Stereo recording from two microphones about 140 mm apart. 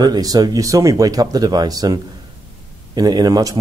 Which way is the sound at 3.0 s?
30° right (ahead or behind).